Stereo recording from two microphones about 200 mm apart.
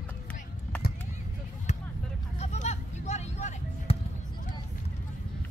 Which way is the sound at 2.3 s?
35° left (ahead or behind).